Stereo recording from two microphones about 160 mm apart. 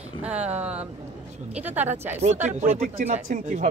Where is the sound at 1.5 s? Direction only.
10° right (ahead or behind).